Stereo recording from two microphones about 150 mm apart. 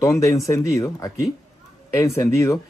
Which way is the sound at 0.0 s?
20° left (ahead or behind).